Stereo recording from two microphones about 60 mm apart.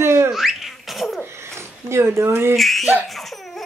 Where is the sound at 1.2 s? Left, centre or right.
Right.